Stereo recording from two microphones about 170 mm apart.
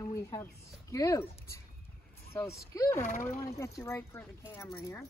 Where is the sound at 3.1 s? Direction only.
50° left (ahead or behind).